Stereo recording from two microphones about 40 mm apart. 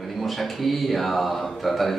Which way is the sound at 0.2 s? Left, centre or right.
Centre.